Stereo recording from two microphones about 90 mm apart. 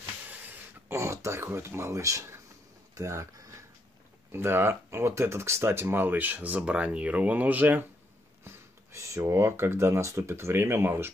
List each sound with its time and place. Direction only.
0.8 s speech: 30° right (ahead or behind)
2.9 s a sound: 35° right (ahead or behind)
4.3 s speech: 25° right (ahead or behind)
8.5 s speech: 35° right (ahead or behind)